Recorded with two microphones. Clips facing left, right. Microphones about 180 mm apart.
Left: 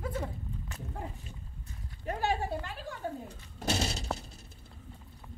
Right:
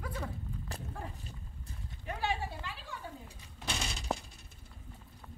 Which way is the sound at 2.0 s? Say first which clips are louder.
Left 5 dB; 45° left (ahead or behind).